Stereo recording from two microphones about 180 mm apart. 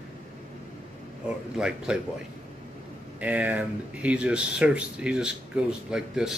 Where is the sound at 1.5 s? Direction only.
5° right (ahead or behind).